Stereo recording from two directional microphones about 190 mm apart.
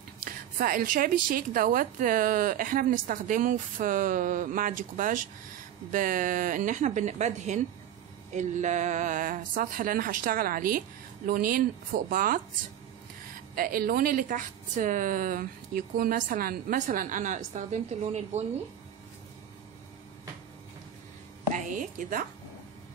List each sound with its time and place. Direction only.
0.2 s a woman's voice: 50° right (ahead or behind)
13.6 s a woman's voice: 50° right (ahead or behind)
21.6 s a woman's voice: 45° right (ahead or behind)